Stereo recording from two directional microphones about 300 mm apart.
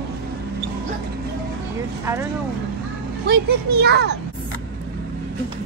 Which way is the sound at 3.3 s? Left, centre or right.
Right.